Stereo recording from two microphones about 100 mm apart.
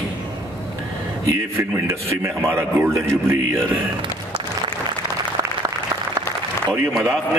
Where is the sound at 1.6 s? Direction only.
25° right (ahead or behind).